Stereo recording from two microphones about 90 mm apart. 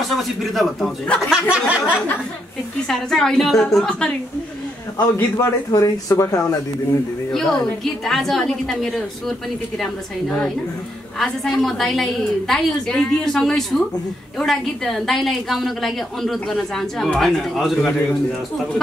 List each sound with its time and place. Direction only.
0.0 s a woman's voice: centre (ahead or behind)
1.3 s a sound: 15° right (ahead or behind)
2.9 s a woman's voice: 5° left (ahead or behind)
5.4 s speech: 40° left (ahead or behind)
7.3 s a woman's voice: centre (ahead or behind)
11.1 s a woman's voice: 5° left (ahead or behind)